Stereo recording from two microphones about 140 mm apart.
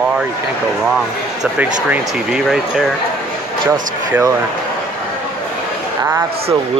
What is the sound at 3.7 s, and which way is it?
Speech, 15° right (ahead or behind).